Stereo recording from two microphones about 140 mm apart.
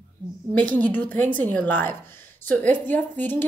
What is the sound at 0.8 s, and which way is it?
A woman's voice, 10° left (ahead or behind).